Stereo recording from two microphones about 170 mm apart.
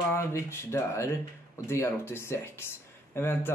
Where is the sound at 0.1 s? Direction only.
15° left (ahead or behind).